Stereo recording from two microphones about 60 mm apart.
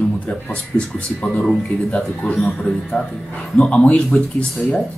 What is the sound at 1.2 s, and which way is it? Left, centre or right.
Speech, centre.